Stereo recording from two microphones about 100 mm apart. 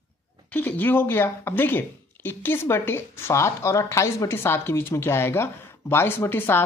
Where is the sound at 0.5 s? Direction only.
20° left (ahead or behind).